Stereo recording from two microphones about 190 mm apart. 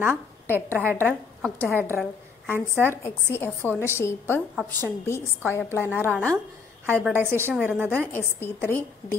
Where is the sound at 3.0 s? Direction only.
15° left (ahead or behind).